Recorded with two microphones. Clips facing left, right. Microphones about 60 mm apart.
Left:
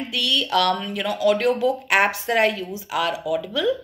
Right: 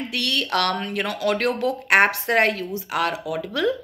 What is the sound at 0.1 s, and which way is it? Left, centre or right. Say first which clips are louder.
A woman's voice: left 3 dB; right.